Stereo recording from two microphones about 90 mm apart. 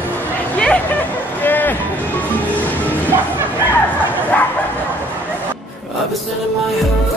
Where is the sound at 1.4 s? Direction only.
20° left (ahead or behind).